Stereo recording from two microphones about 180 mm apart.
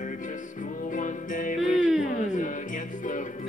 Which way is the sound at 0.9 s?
45° left (ahead or behind).